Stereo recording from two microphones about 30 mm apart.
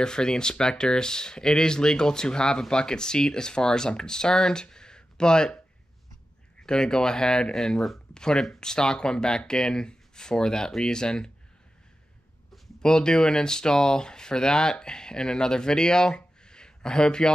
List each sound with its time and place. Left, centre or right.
0.0 s speech: left
6.6 s speech: left
12.8 s speech: left